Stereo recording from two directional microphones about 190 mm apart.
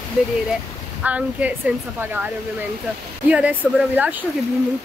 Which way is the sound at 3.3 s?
5° right (ahead or behind).